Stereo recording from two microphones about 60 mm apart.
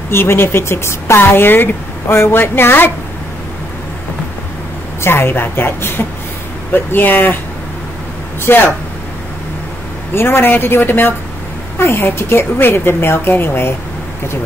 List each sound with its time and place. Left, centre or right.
0.1 s speech: left
5.0 s speech: left
8.5 s speech: left
10.1 s speech: left